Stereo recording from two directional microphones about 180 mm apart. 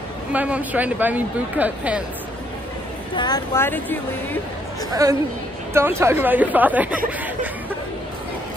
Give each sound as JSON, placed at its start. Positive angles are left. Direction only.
{"t": 0.3, "sound": "speech", "side_deg": -10}
{"t": 3.2, "sound": "speech", "side_deg": 20}
{"t": 5.0, "sound": "speech", "side_deg": -20}